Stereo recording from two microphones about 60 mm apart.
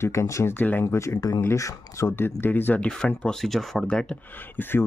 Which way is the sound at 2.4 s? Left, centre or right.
Left.